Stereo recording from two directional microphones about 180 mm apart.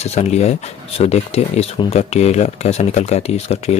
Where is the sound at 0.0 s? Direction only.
35° left (ahead or behind).